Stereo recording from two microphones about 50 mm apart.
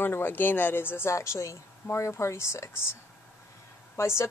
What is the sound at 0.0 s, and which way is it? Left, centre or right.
Speech, left.